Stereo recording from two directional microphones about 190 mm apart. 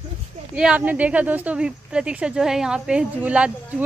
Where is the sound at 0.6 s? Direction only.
5° right (ahead or behind).